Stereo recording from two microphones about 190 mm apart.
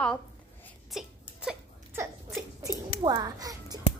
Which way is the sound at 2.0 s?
15° right (ahead or behind).